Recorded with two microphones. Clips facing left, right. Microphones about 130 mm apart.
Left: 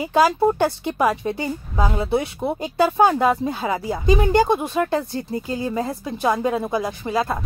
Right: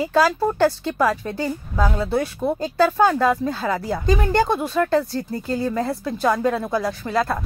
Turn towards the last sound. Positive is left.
turn(degrees=15)  # may be behind; listen again after turning